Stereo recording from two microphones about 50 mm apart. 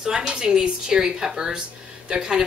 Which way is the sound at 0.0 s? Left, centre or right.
Centre.